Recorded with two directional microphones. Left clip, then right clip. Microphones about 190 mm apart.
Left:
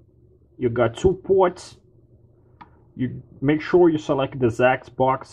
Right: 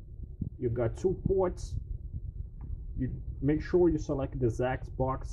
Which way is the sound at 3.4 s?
Centre (ahead or behind).